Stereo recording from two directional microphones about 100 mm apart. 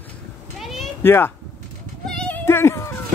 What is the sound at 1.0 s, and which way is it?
Speech, 25° left (ahead or behind).